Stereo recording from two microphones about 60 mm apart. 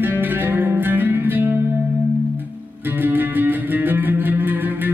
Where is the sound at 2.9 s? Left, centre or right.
Right.